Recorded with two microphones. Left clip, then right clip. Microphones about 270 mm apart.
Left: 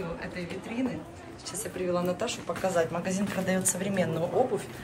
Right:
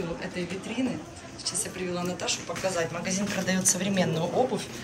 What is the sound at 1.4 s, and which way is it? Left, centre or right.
Speech, centre.